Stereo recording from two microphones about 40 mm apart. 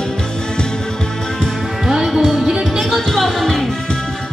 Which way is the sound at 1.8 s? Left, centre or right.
Centre.